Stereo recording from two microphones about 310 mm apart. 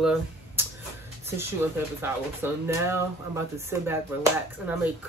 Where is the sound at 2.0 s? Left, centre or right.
Centre.